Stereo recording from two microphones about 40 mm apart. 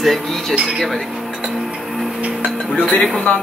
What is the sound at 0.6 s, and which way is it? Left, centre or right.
Speech, right.